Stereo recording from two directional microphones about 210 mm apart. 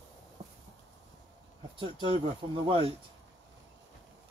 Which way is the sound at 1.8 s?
25° right (ahead or behind).